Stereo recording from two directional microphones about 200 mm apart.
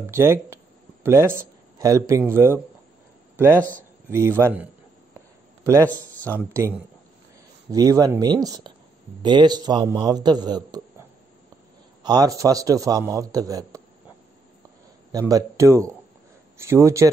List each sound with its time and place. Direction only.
0.1 s a man's voice: 15° right (ahead or behind)
5.9 s speech: 10° left (ahead or behind)
6.5 s a man's voice: 10° right (ahead or behind)
12.0 s a man's voice: 20° right (ahead or behind)
15.1 s a man's voice: 15° right (ahead or behind)